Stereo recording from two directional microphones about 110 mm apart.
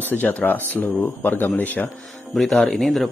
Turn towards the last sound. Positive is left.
turn(degrees=0)  # may be behind; listen again after turning